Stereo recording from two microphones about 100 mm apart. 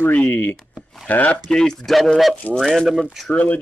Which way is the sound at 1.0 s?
15° left (ahead or behind).